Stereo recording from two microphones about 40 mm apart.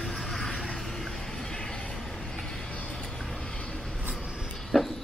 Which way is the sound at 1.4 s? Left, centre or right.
Left.